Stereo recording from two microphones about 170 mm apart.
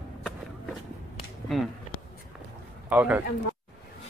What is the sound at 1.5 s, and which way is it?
Speech, centre (ahead or behind).